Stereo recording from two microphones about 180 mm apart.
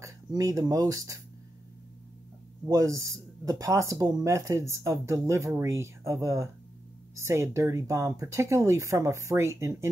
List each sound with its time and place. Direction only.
0.0 s speech: 20° right (ahead or behind)
2.6 s speech: 20° right (ahead or behind)